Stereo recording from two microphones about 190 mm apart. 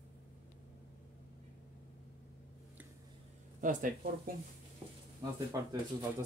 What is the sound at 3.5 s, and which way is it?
Speech, 45° right (ahead or behind).